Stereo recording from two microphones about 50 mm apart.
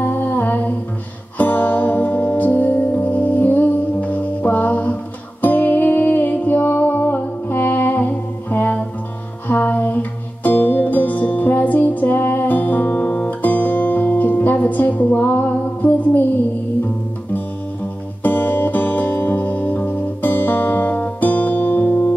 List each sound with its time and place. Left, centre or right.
0.0 s music: left
13.4 s music: left
18.2 s music: left